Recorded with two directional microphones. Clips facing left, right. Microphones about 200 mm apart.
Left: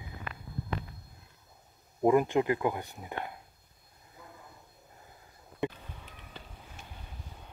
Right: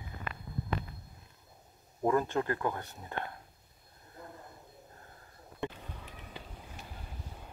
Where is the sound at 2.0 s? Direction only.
15° left (ahead or behind).